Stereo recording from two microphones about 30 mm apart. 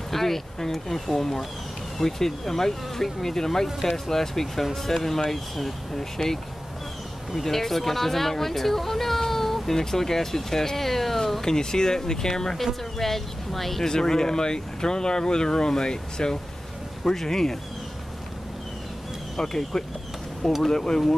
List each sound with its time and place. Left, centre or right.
0.1 s speech: centre
7.4 s speech: centre
11.4 s speech: left
12.9 s speech: centre
13.8 s speech: centre
19.3 s speech: centre